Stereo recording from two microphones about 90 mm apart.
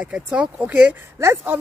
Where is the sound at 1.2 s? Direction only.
30° right (ahead or behind).